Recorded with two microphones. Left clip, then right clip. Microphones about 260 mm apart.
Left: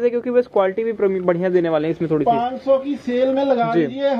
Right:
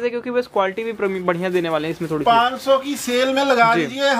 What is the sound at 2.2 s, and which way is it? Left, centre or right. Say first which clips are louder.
Speech: right 6 dB; right.